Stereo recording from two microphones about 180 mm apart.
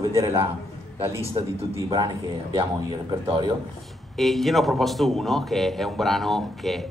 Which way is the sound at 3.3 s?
20° right (ahead or behind).